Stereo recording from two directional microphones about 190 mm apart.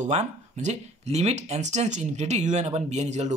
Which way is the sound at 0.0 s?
40° right (ahead or behind).